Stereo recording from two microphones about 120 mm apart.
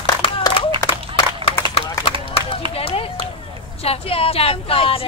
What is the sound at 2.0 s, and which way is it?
Run, 50° left (ahead or behind).